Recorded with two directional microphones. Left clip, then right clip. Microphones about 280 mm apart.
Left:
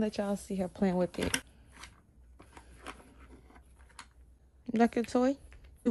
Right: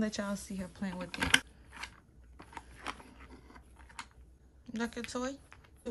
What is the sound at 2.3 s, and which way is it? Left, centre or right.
Biting, centre.